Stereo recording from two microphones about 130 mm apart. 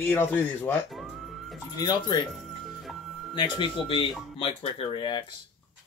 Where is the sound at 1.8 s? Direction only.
35° left (ahead or behind).